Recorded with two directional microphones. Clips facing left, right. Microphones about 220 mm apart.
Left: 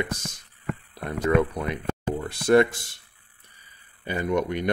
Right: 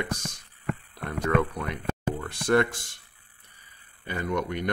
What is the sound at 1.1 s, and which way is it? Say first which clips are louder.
Speech: left 3 dB; 15° left (ahead or behind).